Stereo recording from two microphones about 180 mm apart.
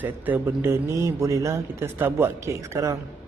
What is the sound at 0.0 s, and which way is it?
Speech, 10° right (ahead or behind).